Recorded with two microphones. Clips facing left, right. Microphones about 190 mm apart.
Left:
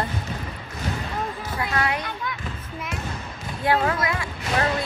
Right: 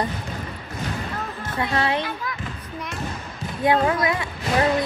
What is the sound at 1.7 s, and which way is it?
Speech, 25° right (ahead or behind).